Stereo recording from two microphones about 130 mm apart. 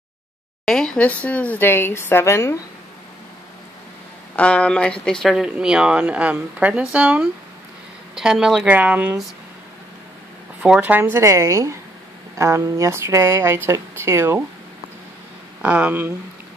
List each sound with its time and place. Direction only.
0.7 s speech: 5° left (ahead or behind)
4.4 s speech: 10° left (ahead or behind); by 9.2 s 10° right (ahead or behind)
10.6 s speech: 10° right (ahead or behind)
15.6 s speech: 10° right (ahead or behind)